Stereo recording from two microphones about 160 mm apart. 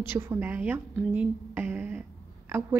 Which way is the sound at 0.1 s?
15° right (ahead or behind).